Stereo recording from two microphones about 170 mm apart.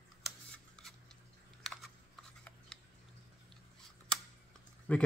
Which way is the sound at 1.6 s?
Centre (ahead or behind).